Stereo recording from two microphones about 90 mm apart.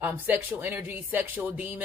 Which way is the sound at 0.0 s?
20° right (ahead or behind).